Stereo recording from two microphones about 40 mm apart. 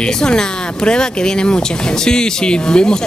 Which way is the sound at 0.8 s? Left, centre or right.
Left.